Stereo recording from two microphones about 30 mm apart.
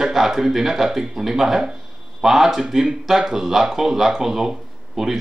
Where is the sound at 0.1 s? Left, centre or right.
Centre.